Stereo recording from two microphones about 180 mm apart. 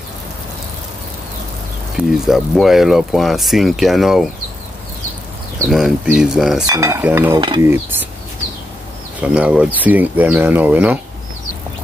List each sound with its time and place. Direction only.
2.0 s speech: centre (ahead or behind)
5.7 s speech: centre (ahead or behind)
6.6 s speech: 20° right (ahead or behind)
7.3 s cutlery: 25° right (ahead or behind)
7.6 s speech: 10° right (ahead or behind)
9.2 s speech: 5° right (ahead or behind)